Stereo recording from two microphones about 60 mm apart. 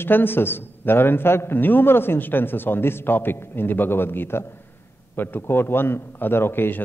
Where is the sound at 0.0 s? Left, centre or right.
Left.